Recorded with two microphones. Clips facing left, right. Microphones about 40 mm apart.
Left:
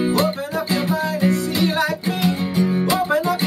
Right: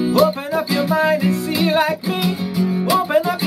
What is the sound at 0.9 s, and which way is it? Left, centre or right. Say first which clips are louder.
Music: right 5 dB; right.